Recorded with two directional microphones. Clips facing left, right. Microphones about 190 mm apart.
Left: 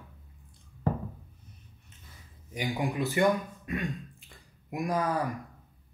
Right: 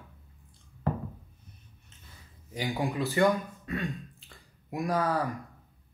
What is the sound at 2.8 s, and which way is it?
Speech, 15° left (ahead or behind).